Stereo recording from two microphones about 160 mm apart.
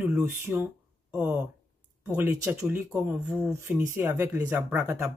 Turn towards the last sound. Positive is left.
turn(degrees=-15)  # may be behind; listen again after turning